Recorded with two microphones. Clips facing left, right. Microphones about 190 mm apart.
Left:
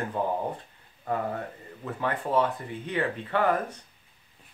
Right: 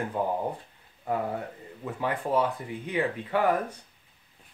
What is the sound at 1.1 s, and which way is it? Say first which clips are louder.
Speech: even; 10° right (ahead or behind).